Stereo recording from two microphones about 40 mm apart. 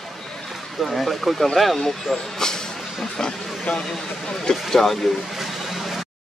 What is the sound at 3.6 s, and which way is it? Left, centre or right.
Speech, left.